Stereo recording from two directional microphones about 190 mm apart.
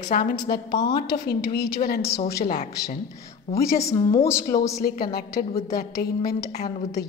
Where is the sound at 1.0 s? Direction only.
55° left (ahead or behind).